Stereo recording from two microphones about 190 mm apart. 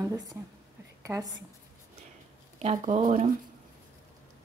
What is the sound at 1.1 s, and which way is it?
Speech, 15° right (ahead or behind).